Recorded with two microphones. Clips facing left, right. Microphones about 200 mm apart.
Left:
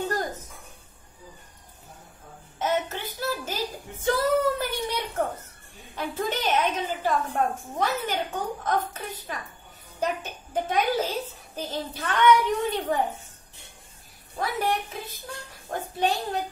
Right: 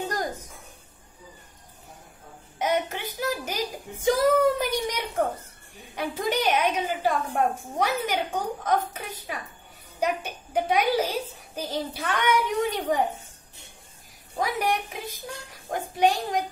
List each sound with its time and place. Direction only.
2.6 s a sound: 15° right (ahead or behind)
5.9 s a woman's voice: 10° right (ahead or behind)
14.4 s a woman's voice: 15° right (ahead or behind)